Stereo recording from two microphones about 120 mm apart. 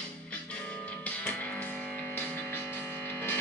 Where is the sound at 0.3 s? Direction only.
10° left (ahead or behind).